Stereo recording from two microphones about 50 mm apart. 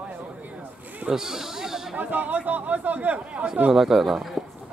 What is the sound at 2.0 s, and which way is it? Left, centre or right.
Speech, right.